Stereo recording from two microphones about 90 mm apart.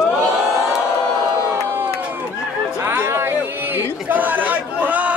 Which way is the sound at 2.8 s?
25° right (ahead or behind).